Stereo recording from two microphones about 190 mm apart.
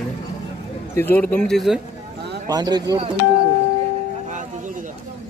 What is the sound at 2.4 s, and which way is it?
Speech, 20° right (ahead or behind).